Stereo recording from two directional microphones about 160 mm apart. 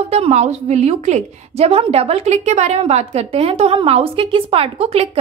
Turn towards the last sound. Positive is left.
turn(degrees=-40)  # may be behind; listen again after turning